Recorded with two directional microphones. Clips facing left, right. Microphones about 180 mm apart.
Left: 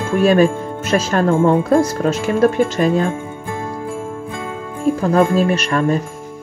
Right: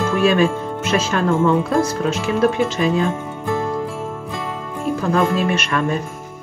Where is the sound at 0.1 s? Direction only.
45° left (ahead or behind).